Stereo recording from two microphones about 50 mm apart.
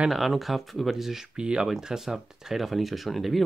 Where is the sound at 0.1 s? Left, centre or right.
Centre.